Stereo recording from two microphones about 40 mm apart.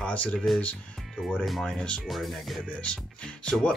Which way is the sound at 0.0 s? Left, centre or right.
Left.